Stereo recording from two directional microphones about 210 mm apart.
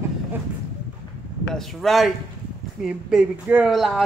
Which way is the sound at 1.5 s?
Centre (ahead or behind).